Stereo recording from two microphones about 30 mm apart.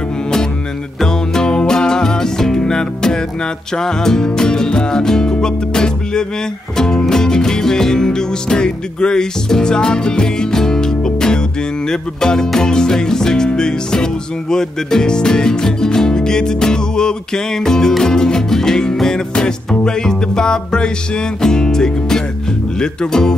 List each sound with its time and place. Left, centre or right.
1.0 s music: left
19.4 s music: left